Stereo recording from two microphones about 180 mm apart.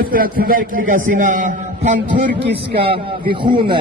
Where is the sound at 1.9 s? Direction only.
75° right (ahead or behind).